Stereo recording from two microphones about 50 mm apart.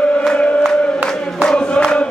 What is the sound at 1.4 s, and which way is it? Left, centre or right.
Chant, centre.